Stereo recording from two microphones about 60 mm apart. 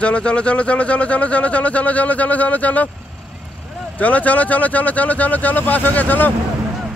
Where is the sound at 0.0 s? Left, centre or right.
Centre.